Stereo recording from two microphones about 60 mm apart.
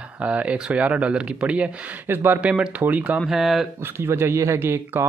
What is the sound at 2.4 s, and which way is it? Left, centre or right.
Speech, centre.